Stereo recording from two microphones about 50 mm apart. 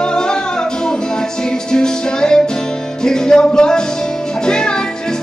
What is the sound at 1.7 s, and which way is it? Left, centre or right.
Music, centre.